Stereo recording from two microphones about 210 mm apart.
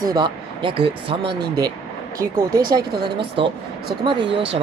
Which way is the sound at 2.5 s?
45° right (ahead or behind).